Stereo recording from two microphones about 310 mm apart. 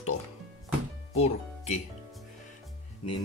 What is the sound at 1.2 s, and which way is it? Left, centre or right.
Speech, left.